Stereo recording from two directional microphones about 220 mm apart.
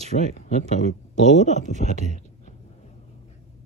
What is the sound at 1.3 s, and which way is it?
Speech, 30° left (ahead or behind).